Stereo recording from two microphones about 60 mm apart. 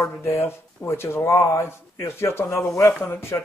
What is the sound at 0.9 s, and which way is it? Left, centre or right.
A man's voice, left.